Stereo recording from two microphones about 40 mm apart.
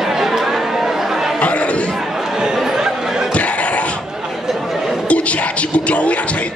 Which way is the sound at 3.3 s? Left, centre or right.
Left.